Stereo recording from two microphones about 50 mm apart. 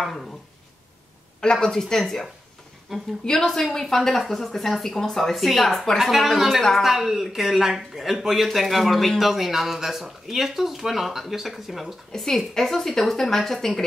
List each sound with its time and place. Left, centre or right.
0.0 s speech: centre
1.4 s a woman's voice: centre
2.9 s a woman's voice: centre
3.3 s speech: centre
12.1 s a woman's voice: centre